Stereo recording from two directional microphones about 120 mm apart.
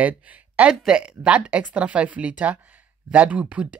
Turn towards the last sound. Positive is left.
turn(degrees=-10)  # may be behind; listen again after turning